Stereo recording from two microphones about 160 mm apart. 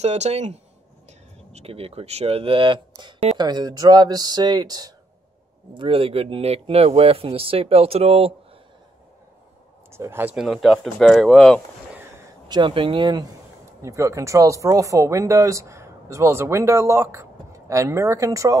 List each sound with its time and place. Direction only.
0.0 s speech: 45° right (ahead or behind); by 4.9 s 25° right (ahead or behind)
5.8 s speech: 35° right (ahead or behind)
9.8 s speech: 15° right (ahead or behind)
10.3 s speech: centre (ahead or behind)
12.4 s speech: 30° right (ahead or behind)